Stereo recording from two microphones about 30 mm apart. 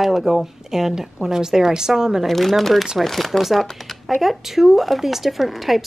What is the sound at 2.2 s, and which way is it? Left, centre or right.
Speech, centre.